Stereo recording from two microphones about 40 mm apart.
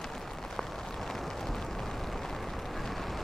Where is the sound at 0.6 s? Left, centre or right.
Centre.